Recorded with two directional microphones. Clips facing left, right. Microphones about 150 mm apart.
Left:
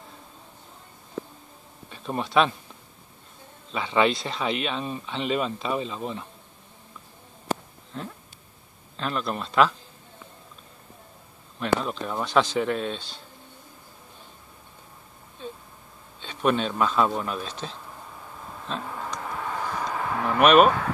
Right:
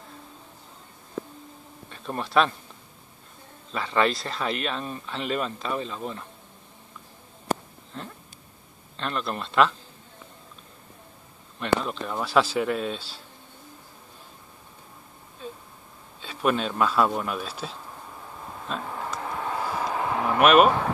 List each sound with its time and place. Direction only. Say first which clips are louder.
1.9 s speech: left 2 dB; centre (ahead or behind)
3.7 s speech: left 1 dB; centre (ahead or behind)
7.5 s a sound: right 1 dB; 45° right (ahead or behind)
7.9 s speech: left 3 dB; centre (ahead or behind)
11.6 s speech: even; centre (ahead or behind)
15.4 s a sound: left 1 dB; 5° right (ahead or behind)
16.2 s speech: left 1 dB; 5° right (ahead or behind)
18.7 s vehicle: even; 5° right (ahead or behind)
19.9 s a sound: right 2 dB; 20° right (ahead or behind)
20.2 s speech: left 1 dB; centre (ahead or behind)